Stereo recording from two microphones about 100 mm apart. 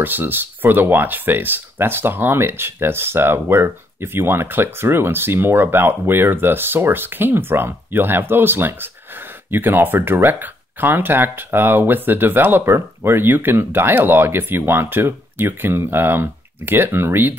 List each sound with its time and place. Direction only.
0.0 s speech: 20° right (ahead or behind)